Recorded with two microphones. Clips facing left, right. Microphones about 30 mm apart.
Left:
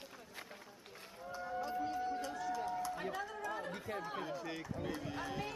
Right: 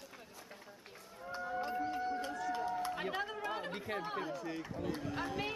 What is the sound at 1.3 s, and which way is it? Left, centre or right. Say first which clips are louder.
Run: right 2 dB; right.